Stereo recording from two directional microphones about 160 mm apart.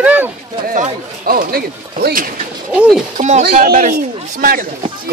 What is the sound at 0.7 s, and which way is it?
Speech, 55° right (ahead or behind).